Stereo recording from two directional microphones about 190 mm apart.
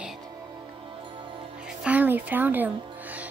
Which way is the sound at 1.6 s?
5° right (ahead or behind).